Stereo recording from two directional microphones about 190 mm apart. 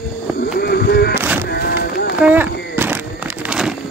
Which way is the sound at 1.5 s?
55° left (ahead or behind).